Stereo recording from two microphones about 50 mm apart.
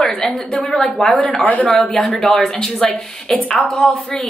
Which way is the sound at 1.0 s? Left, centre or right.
Left.